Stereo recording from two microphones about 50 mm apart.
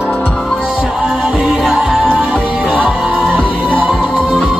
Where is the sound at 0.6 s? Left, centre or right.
Centre.